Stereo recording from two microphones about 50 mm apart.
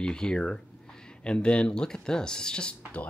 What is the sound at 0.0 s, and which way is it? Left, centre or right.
Speech, centre.